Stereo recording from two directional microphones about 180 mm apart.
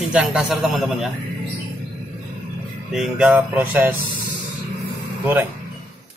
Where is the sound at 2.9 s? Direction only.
5° right (ahead or behind).